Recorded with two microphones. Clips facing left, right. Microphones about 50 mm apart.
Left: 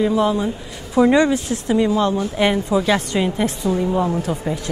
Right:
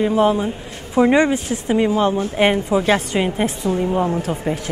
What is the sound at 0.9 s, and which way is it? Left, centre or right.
Speech, right.